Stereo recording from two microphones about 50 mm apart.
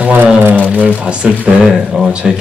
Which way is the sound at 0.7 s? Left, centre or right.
Right.